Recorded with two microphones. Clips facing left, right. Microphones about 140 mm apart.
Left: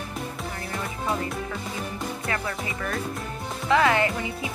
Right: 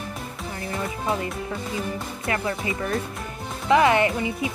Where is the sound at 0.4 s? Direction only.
Centre (ahead or behind).